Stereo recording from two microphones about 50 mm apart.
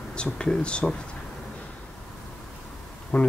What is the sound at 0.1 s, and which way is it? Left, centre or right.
Speech, centre.